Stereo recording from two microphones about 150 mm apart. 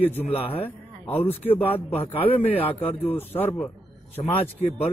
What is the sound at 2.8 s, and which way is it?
Speech, 10° left (ahead or behind).